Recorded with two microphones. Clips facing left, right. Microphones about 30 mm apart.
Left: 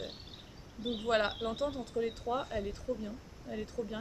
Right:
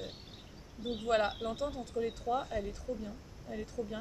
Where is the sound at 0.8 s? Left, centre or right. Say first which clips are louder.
Even; left.